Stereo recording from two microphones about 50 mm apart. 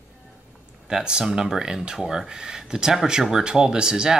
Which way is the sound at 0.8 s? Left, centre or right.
Centre.